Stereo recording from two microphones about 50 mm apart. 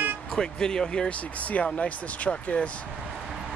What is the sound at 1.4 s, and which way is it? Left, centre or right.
Speech, left.